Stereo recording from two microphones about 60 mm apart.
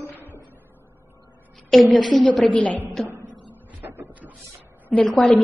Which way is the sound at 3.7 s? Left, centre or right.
Right.